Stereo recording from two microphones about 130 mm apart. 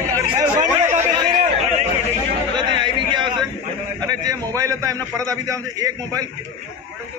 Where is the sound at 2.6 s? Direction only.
35° right (ahead or behind).